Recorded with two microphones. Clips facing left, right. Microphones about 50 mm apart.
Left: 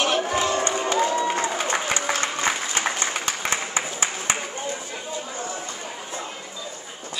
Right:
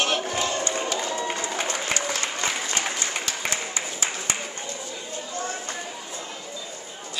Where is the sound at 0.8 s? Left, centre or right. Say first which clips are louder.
Left 6 dB; left.